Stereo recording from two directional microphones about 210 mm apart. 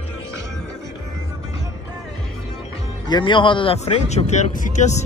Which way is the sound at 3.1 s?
20° left (ahead or behind).